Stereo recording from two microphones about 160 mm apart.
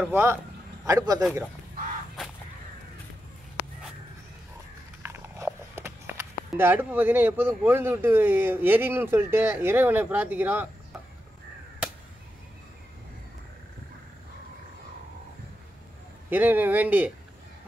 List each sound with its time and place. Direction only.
0.1 s a man's voice: 15° right (ahead or behind)
5.0 s speech: 15° right (ahead or behind)
16.3 s speech: 10° right (ahead or behind)